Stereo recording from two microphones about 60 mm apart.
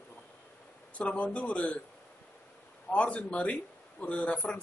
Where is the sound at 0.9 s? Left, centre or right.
Left.